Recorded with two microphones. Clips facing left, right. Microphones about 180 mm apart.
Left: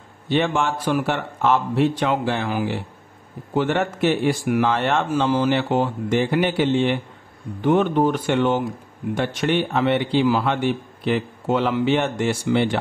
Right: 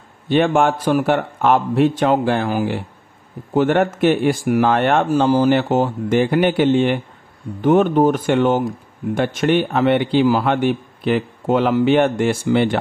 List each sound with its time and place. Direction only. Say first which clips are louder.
0.3 s a man's voice: right 5 dB; 50° right (ahead or behind)
5.1 s a man's voice: right 5 dB; 40° right (ahead or behind)